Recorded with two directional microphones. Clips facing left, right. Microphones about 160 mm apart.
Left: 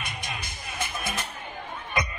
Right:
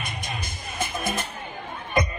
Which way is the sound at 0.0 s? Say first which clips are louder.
Right 3 dB; 45° right (ahead or behind).